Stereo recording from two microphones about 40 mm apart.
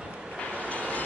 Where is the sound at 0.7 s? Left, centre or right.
Left.